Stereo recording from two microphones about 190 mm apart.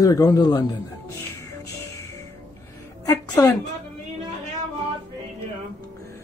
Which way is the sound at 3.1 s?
15° left (ahead or behind).